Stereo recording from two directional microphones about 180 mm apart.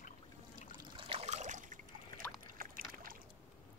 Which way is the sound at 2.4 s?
50° right (ahead or behind).